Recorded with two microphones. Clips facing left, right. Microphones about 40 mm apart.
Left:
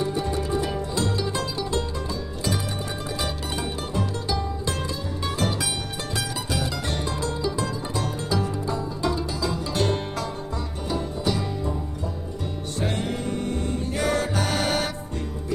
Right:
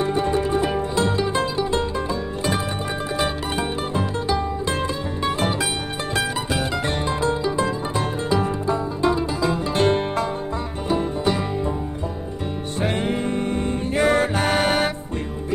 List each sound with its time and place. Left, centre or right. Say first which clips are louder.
0.0 s music: right 5 dB; right
3.2 s music: right 7 dB; right
12.8 s music: right 5 dB; right